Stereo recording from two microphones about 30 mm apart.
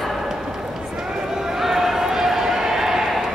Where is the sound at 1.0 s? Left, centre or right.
Centre.